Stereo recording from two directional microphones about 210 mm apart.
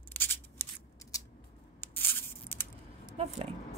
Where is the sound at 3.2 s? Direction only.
30° right (ahead or behind).